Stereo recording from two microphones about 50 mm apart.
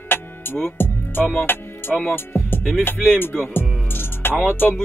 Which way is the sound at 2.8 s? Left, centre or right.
Left.